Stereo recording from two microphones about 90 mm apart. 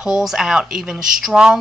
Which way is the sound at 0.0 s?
5° right (ahead or behind).